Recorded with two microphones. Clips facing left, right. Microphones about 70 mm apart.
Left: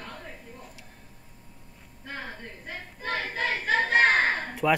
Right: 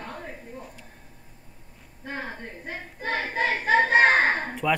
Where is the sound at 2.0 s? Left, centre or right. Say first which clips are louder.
Right 4 dB; right.